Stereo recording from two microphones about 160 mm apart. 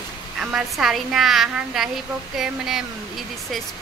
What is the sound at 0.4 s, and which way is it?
A woman's voice, 5° right (ahead or behind).